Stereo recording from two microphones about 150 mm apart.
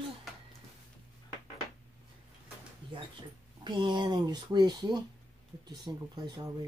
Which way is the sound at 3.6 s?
30° right (ahead or behind).